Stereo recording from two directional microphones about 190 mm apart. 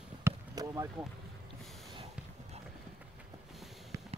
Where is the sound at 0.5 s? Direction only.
20° right (ahead or behind).